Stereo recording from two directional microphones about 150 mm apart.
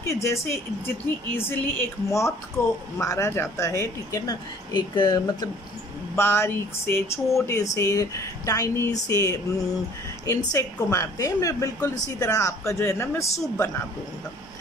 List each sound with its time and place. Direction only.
0.0 s speech: 20° left (ahead or behind)
6.1 s speech: 15° left (ahead or behind)